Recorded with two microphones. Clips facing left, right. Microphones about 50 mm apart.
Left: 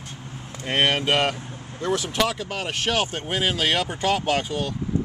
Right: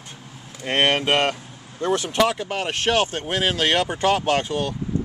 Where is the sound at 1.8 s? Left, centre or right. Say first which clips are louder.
Right 3 dB; centre.